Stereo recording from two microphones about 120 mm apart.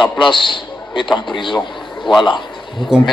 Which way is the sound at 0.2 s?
45° left (ahead or behind).